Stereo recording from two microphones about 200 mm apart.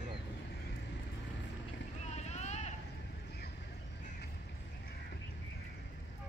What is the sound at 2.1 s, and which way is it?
Vehicle, 35° left (ahead or behind).